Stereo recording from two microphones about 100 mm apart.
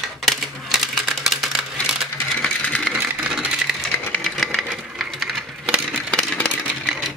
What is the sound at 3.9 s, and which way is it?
Sewing machine, 10° left (ahead or behind).